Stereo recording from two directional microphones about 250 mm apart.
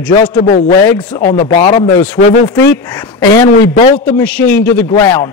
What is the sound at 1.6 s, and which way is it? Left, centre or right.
Speech, left.